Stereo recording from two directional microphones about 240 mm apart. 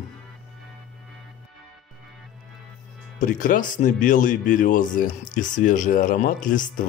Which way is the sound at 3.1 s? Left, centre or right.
Left.